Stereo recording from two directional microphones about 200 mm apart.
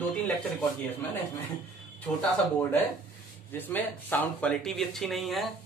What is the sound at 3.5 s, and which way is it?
Speech, 10° left (ahead or behind).